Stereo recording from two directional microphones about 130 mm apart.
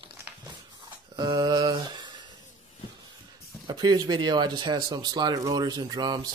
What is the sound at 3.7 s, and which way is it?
Speech, 30° right (ahead or behind).